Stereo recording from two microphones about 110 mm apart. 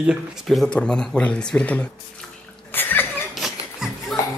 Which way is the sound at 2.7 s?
20° left (ahead or behind).